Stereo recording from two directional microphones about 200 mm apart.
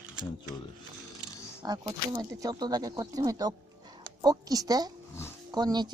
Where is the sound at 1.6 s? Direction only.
20° right (ahead or behind).